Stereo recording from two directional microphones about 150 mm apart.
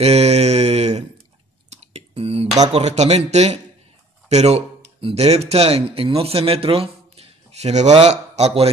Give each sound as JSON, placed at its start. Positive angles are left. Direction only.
{"t": 0.0, "sound": "mantra", "side_deg": -45}
{"t": 1.7, "sound": "whispering", "side_deg": -45}
{"t": 2.7, "sound": "speech", "side_deg": -45}